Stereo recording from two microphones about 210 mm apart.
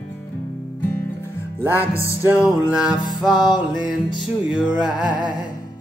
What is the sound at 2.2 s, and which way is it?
Music, 5° right (ahead or behind).